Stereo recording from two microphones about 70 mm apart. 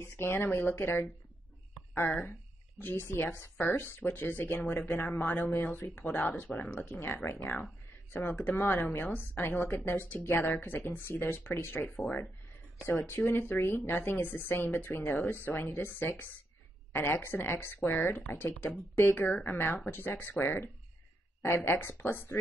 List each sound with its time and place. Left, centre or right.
0.0 s speech: left
11.9 s speech: centre
12.8 s speech: left